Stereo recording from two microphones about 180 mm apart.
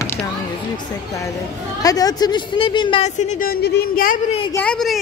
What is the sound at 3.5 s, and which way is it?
Speech, 60° left (ahead or behind).